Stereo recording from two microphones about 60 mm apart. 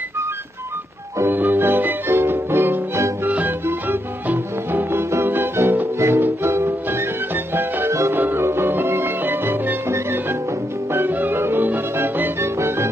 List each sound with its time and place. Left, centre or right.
1.3 s music: right
3.3 s music: right
8.1 s music: right